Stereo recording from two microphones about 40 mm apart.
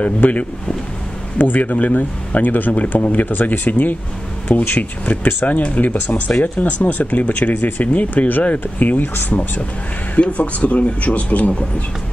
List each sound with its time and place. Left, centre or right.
0.2 s speech: left
1.4 s speech: left
2.7 s speech: left
3.3 s speech: left
10.2 s speech: left